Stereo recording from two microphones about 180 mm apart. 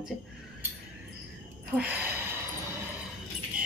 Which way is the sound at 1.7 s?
10° right (ahead or behind).